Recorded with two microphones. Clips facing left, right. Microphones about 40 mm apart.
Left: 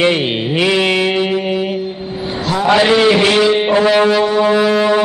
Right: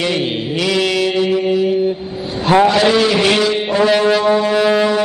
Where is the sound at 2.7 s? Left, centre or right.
Left.